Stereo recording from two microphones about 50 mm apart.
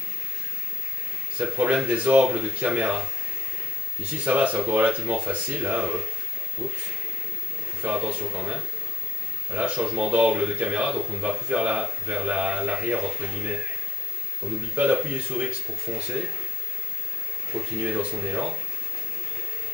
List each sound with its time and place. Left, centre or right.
1.4 s speech: right
4.2 s speech: right
7.8 s speech: centre
14.4 s a man's voice: right
15.4 s speech: centre
17.5 s speech: centre